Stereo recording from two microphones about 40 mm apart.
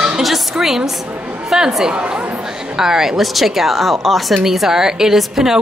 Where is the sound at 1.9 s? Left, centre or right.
Right.